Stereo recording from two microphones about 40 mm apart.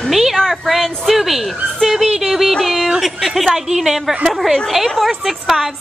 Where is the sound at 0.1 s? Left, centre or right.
Centre.